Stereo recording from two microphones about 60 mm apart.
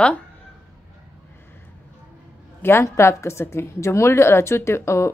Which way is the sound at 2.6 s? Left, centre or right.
Left.